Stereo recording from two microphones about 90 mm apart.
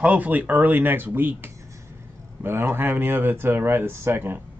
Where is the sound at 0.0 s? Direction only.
15° right (ahead or behind).